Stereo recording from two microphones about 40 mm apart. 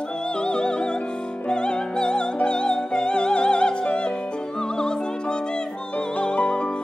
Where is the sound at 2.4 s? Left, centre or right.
Left.